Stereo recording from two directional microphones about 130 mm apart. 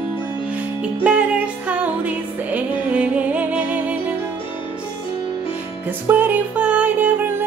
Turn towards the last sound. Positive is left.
turn(degrees=-15)  # may be behind; listen again after turning